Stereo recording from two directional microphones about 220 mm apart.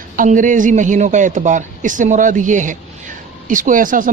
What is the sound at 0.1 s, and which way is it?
Speech, 35° right (ahead or behind).